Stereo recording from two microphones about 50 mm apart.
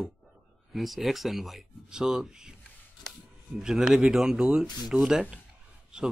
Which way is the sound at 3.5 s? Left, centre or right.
Centre.